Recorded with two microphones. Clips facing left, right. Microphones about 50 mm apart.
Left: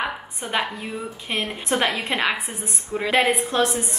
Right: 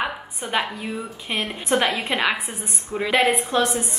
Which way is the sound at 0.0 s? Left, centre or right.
Centre.